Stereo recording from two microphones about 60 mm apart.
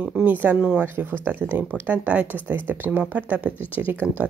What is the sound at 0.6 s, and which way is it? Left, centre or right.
Speech, centre.